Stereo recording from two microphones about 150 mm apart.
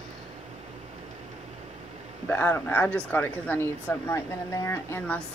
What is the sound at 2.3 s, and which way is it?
Speech, 15° left (ahead or behind).